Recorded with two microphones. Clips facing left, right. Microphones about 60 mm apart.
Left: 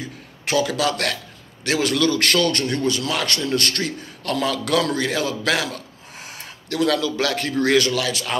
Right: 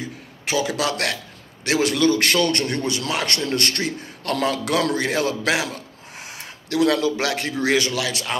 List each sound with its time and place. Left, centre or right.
0.6 s a man's voice: right
4.3 s a man's voice: right
4.9 s a man's voice: right
6.1 s gasp: right
7.5 s a man's voice: centre